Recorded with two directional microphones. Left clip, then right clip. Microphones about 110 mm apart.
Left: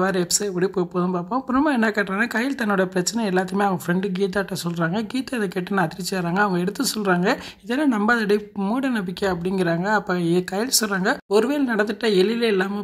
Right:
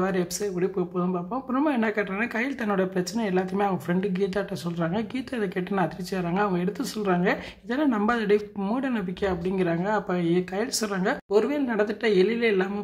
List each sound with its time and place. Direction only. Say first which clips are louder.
0.0 s speech: left 5 dB; 35° left (ahead or behind)